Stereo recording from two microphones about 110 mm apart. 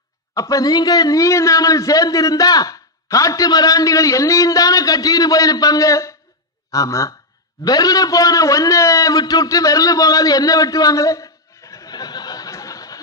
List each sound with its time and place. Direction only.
0.3 s a man's voice: 30° left (ahead or behind)